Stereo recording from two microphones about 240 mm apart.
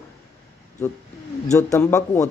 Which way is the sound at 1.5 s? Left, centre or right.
Centre.